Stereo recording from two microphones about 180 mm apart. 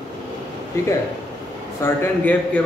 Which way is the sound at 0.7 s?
15° left (ahead or behind).